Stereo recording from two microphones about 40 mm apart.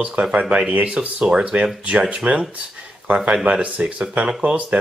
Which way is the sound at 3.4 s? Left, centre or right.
Right.